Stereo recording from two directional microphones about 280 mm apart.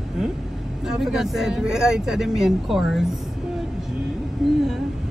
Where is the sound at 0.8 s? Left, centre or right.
Centre.